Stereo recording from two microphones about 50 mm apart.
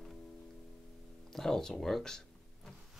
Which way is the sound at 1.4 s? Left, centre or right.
Centre.